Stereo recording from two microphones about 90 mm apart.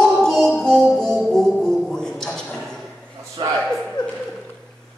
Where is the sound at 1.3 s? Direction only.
5° left (ahead or behind).